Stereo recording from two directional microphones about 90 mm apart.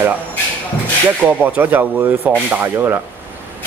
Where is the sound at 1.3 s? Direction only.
20° right (ahead or behind).